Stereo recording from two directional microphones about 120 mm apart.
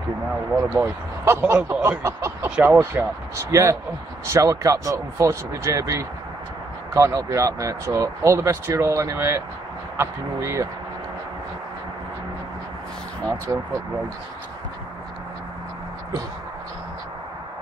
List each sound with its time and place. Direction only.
0.7 s speech: 15° right (ahead or behind)
13.5 s speech: 20° right (ahead or behind)